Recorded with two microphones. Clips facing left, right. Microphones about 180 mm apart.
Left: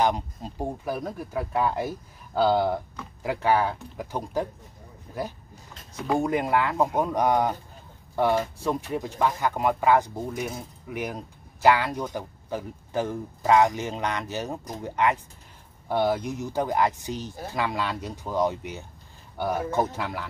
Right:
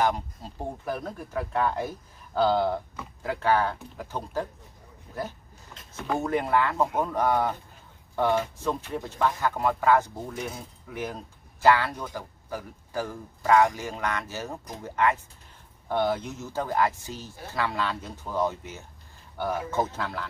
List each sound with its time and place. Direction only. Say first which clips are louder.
0.0 s speech: left 2 dB; 15° left (ahead or behind)
6.0 s speech: left 3 dB; 10° left (ahead or behind)